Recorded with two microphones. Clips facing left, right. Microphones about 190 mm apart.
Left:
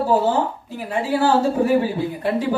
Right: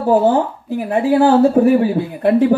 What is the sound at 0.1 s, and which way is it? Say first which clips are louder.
Speech: right 8 dB; 60° right (ahead or behind).